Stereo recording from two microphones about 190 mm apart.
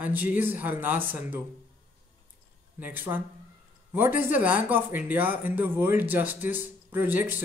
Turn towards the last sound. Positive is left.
turn(degrees=-10)  # may be behind; listen again after turning